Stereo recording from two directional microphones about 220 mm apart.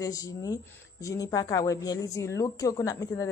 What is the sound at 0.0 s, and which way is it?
A woman's voice, 15° left (ahead or behind).